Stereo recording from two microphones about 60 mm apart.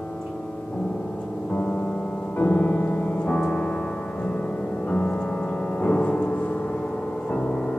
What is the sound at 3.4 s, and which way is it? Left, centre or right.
Piano, centre.